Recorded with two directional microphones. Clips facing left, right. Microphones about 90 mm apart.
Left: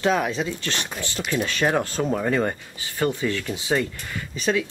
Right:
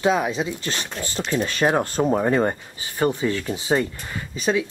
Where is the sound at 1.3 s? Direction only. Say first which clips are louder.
Right 2 dB; 30° right (ahead or behind).